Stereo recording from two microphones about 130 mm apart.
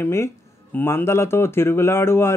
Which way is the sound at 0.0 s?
15° left (ahead or behind).